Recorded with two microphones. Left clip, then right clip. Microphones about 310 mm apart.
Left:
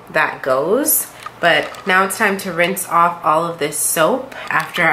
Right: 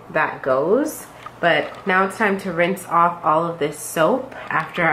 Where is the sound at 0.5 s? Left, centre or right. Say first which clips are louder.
Left 1 dB; right.